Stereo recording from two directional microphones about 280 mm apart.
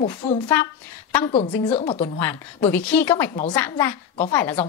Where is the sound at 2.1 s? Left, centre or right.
Centre.